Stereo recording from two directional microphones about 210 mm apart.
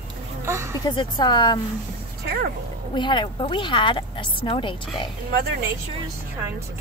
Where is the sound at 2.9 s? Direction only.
20° left (ahead or behind).